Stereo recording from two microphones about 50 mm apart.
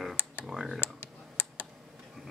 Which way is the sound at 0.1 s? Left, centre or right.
Left.